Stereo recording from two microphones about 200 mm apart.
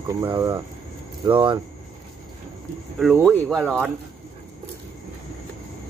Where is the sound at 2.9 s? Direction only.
Centre (ahead or behind).